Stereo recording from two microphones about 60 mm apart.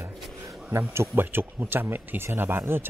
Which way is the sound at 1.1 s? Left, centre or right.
Right.